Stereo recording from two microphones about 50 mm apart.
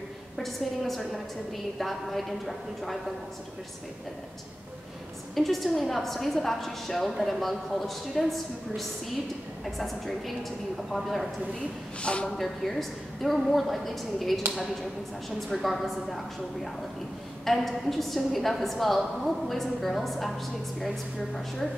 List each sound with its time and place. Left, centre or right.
0.4 s a woman's voice: centre
5.3 s a woman's voice: centre
12.0 s a man's voice: left
12.3 s a woman's voice: centre
17.5 s a woman's voice: centre